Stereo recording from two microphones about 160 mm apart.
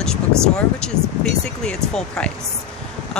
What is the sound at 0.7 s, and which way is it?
Speech, 5° left (ahead or behind).